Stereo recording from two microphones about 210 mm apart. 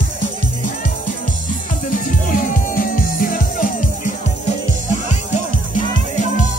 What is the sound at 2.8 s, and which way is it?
Music, 40° left (ahead or behind).